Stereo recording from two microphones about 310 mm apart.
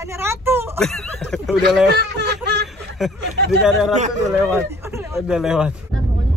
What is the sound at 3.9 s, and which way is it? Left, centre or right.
Speech, right.